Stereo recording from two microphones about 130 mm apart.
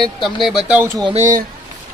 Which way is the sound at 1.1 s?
80° right.